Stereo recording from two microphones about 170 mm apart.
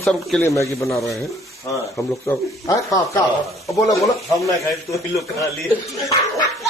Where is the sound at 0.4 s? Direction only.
15° left (ahead or behind).